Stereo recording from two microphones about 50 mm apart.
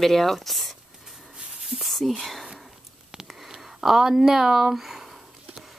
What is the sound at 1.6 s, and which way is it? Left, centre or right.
Whispering, centre.